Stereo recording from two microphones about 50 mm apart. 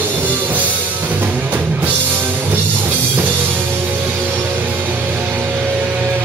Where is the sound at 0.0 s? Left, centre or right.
Right.